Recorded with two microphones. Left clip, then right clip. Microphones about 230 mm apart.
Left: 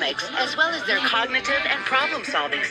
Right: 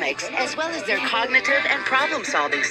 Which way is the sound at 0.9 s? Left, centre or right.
Centre.